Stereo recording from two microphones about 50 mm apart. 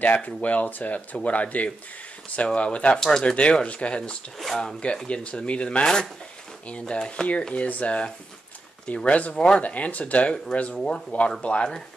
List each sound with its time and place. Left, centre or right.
0.0 s speech: left; by 3.3 s centre
3.3 s speech: left
4.4 s speech: centre
5.0 s speech: left
10.8 s speech: centre